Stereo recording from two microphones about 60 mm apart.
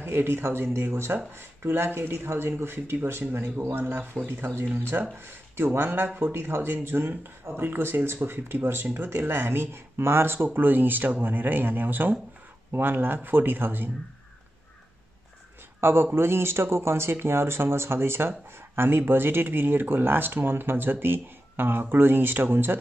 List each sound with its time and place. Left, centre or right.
0.0 s speech: right
15.8 s speech: right